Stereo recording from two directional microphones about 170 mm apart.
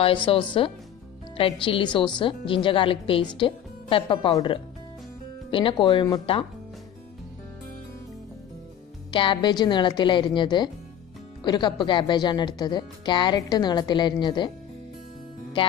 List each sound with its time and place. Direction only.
0.0 s a woman's voice: 30° left (ahead or behind)
9.1 s speech: 30° left (ahead or behind)